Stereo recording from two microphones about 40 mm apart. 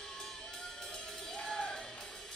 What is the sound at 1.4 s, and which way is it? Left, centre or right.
Music, centre.